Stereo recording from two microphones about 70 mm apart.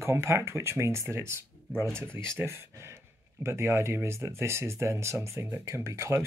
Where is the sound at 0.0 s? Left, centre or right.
Right.